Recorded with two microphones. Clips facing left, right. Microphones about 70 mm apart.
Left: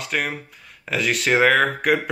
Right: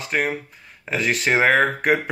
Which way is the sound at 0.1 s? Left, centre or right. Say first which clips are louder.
Right 2 dB; right.